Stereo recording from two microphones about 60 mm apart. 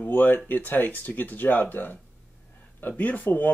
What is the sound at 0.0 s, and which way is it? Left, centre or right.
Speech, left.